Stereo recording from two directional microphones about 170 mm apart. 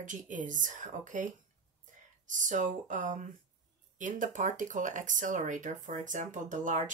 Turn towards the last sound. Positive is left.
turn(degrees=-50)  # may be behind; listen again after turning